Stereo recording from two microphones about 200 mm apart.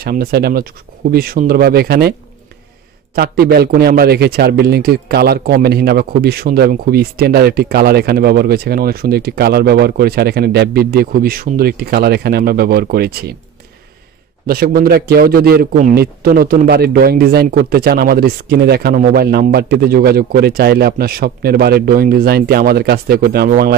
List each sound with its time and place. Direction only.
0.0 s a man's voice: 50° right (ahead or behind)
3.2 s a man's voice: 50° right (ahead or behind)
14.4 s a man's voice: 45° right (ahead or behind)